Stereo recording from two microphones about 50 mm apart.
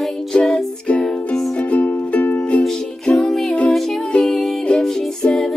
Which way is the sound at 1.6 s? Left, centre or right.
Left.